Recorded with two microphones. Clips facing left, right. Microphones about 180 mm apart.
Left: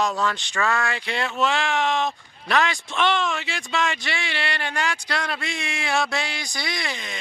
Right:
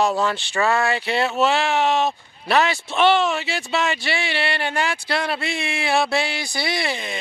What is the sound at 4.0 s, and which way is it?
Speech, 30° right (ahead or behind).